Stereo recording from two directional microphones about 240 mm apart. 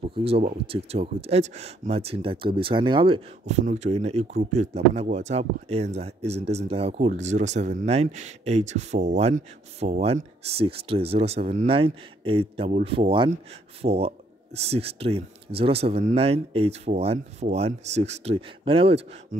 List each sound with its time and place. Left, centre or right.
0.1 s speech: right